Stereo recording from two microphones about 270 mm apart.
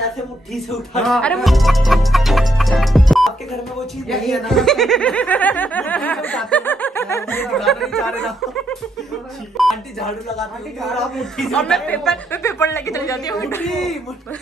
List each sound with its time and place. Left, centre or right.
0.7 s speech: centre